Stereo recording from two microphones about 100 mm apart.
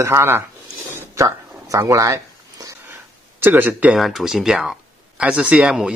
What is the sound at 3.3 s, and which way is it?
Speech, 20° right (ahead or behind).